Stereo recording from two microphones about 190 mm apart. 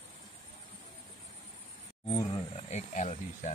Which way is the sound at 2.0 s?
25° left (ahead or behind).